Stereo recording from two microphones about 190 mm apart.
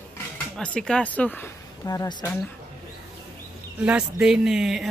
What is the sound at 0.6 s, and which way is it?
A woman's voice, 5° left (ahead or behind).